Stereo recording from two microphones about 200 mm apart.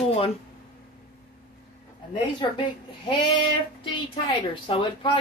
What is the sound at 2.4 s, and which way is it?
A woman's voice, 25° left (ahead or behind).